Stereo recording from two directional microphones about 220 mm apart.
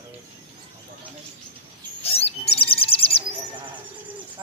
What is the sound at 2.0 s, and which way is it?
Bird, 25° left (ahead or behind).